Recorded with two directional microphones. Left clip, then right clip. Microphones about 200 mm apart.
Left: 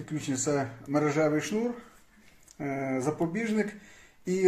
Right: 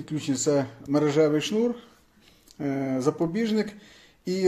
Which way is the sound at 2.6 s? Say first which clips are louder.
Right 3 dB; 50° right (ahead or behind).